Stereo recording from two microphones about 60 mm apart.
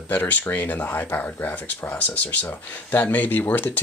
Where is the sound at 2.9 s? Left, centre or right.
Left.